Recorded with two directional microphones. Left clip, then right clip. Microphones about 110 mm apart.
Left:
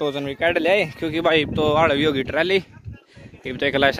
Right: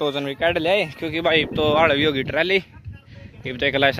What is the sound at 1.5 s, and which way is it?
Speech, 45° left (ahead or behind).